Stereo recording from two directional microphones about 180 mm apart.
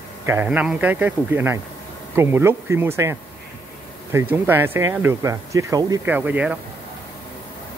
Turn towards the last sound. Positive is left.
turn(degrees=-5)  # may be behind; listen again after turning